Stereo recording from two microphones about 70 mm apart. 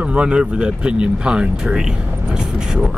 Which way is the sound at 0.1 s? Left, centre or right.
Centre.